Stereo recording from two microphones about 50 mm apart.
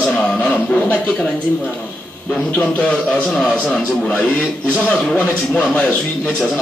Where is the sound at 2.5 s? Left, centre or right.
Left.